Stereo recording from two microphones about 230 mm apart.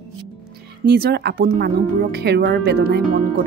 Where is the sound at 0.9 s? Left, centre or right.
Right.